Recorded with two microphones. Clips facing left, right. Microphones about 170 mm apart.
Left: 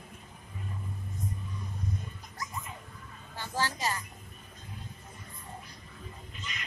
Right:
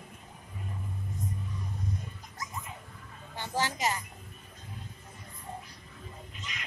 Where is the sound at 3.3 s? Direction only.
20° right (ahead or behind).